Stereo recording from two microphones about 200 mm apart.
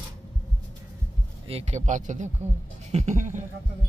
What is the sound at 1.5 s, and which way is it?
A man's voice, 30° right (ahead or behind).